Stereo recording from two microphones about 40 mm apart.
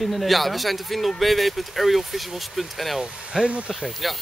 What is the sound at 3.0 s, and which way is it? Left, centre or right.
Speech, centre.